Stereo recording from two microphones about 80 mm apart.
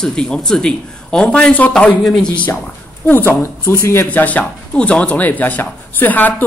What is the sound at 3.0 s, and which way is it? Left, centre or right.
Speech, left.